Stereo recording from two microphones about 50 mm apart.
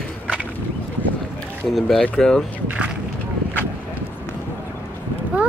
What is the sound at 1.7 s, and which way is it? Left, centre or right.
Speech, centre.